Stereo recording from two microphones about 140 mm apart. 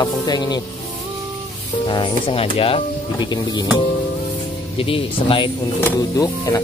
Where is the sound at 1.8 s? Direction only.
35° left (ahead or behind).